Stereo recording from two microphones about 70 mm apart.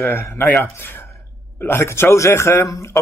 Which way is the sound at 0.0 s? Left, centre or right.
Left.